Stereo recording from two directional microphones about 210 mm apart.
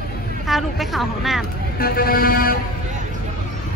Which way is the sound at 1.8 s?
45° left (ahead or behind).